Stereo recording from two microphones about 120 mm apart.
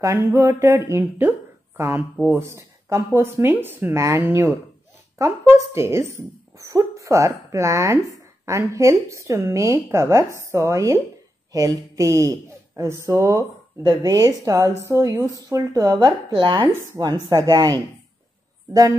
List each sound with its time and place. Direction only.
0.0 s speech: 25° right (ahead or behind)
16.6 s speech: 25° right (ahead or behind)